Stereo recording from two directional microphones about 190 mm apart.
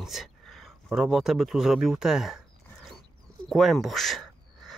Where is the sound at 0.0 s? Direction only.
Centre (ahead or behind).